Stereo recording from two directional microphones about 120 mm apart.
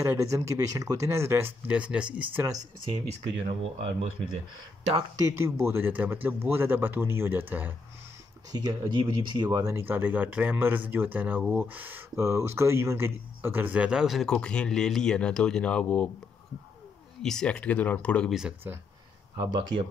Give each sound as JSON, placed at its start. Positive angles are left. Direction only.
{"t": 0.0, "sound": "speech", "side_deg": -25}
{"t": 1.7, "sound": "speech", "side_deg": -10}
{"t": 2.8, "sound": "speech", "side_deg": -50}
{"t": 5.3, "sound": "speech", "side_deg": -20}
{"t": 8.5, "sound": "speech", "side_deg": -35}
{"t": 9.8, "sound": "speech", "side_deg": -15}
{"t": 17.2, "sound": "speech", "side_deg": 5}
{"t": 18.6, "sound": "speech", "side_deg": -20}
{"t": 19.3, "sound": "speech", "side_deg": -30}